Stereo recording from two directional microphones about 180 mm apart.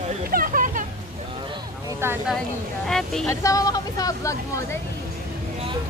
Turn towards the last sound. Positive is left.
turn(degrees=20)  # may be behind; listen again after turning